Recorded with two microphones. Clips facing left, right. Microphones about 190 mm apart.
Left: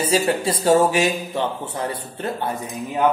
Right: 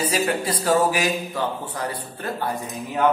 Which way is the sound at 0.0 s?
25° left (ahead or behind).